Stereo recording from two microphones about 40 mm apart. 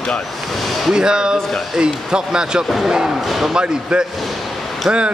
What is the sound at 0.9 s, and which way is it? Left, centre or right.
Speech, centre.